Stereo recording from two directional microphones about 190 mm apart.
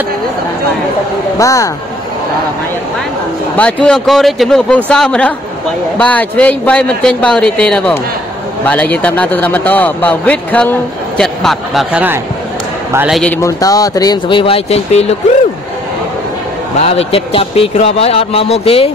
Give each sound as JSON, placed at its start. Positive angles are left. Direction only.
{"t": 1.4, "sound": "a man's voice", "side_deg": 15}
{"t": 3.5, "sound": "a man's voice", "side_deg": 5}
{"t": 13.4, "sound": "speech", "side_deg": 20}
{"t": 16.8, "sound": "a man's voice", "side_deg": 30}